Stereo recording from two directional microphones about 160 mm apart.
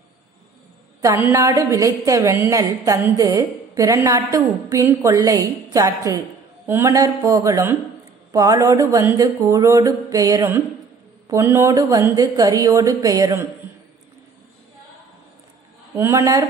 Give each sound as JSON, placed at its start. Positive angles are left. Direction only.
{"t": 1.0, "sound": "a woman's voice", "side_deg": -15}
{"t": 16.0, "sound": "speech", "side_deg": -15}